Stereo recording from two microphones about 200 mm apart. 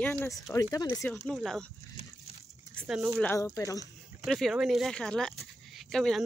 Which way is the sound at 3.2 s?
15° left (ahead or behind).